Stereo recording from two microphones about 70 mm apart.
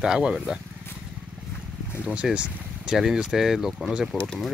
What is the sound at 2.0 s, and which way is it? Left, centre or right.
Speech, centre.